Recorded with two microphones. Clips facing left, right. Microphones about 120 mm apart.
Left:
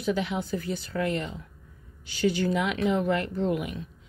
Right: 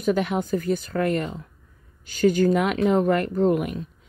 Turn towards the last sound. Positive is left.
turn(degrees=-50)  # may be behind; listen again after turning